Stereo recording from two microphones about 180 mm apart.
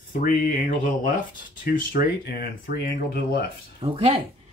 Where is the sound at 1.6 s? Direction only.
55° left (ahead or behind).